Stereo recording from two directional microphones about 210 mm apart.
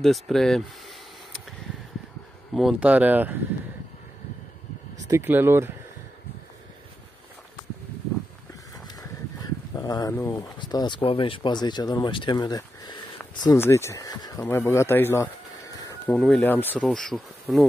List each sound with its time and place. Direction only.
0.0 s speech: centre (ahead or behind)
2.5 s speech: 5° right (ahead or behind)
4.9 s speech: 15° right (ahead or behind)
8.7 s speech: 15° left (ahead or behind); by 17.6 s centre (ahead or behind)